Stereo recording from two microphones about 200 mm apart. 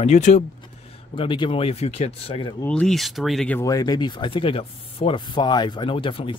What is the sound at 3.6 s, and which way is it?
Speech, 20° left (ahead or behind).